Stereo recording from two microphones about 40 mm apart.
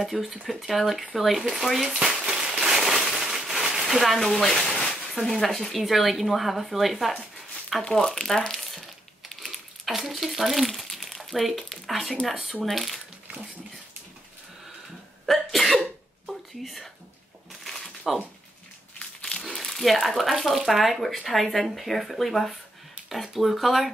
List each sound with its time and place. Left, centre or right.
0.0 s speech: centre
2.0 s a sound: centre
4.0 s speech: centre
7.9 s speech: centre
9.3 s crumpling: centre
10.2 s speech: centre
12.4 s speech: right
12.6 s speech: centre
15.2 s cough: centre
16.3 s whispering: centre
17.6 s a sound: centre
19.4 s speech: centre